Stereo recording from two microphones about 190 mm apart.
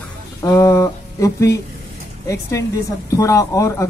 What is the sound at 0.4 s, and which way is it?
Speech, 15° left (ahead or behind).